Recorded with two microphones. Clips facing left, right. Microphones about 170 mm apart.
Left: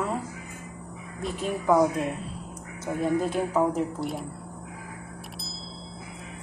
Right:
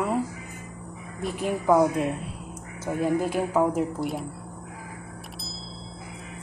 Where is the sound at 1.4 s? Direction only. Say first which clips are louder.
Right 2 dB; 15° right (ahead or behind).